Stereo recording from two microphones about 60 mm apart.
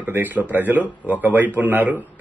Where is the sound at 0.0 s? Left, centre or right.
Right.